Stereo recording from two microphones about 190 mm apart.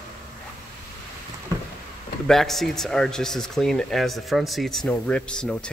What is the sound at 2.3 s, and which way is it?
Speech, centre (ahead or behind).